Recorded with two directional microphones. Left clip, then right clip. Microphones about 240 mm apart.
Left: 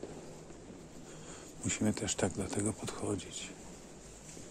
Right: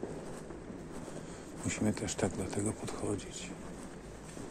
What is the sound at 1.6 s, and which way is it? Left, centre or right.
Speech, left.